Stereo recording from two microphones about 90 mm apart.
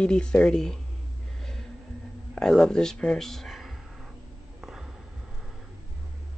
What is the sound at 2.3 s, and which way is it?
Speech, 5° left (ahead or behind).